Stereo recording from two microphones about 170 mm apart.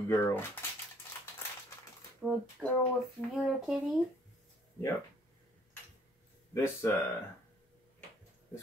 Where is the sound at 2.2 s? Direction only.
Centre (ahead or behind).